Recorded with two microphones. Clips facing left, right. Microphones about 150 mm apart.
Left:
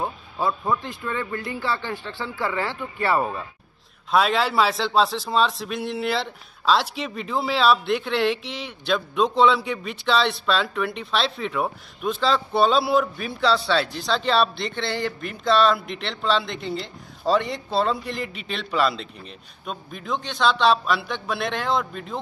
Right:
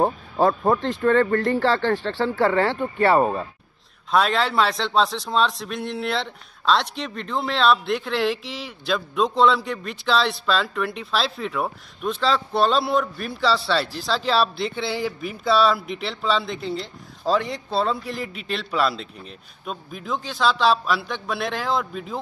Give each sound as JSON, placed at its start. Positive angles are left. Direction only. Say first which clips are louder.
{"t": 0.0, "sound": "speech", "louder": "right 7 dB", "side_deg": -40}
{"t": 0.7, "sound": "speech", "louder": "right 11 dB", "side_deg": -70}
{"t": 3.2, "sound": "speech", "louder": "right 5 dB", "side_deg": -30}
{"t": 4.1, "sound": "a man's voice", "louder": "even", "side_deg": 0}